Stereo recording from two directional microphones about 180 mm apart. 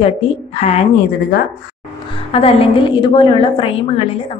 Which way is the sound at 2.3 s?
30° left (ahead or behind).